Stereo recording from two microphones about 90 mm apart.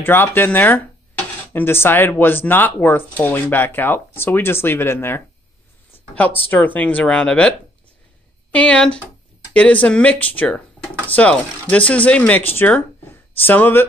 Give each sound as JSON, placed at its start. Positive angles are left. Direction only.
{"t": 0.0, "sound": "speech", "side_deg": 20}